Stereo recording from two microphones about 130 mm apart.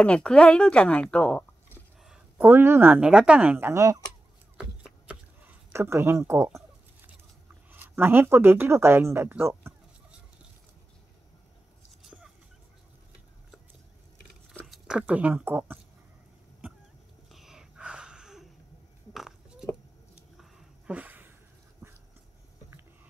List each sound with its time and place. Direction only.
0.0 s speech: 5° left (ahead or behind)
2.0 s speech: 15° right (ahead or behind)
5.7 s speech: 20° right (ahead or behind)
7.7 s speech: 15° right (ahead or behind)
12.0 s fowl: 5° right (ahead or behind)
14.7 s speech: 5° right (ahead or behind)
17.3 s a sound: centre (ahead or behind)
20.3 s a sound: 5° right (ahead or behind)